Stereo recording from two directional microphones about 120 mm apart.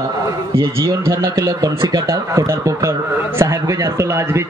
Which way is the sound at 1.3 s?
30° right (ahead or behind).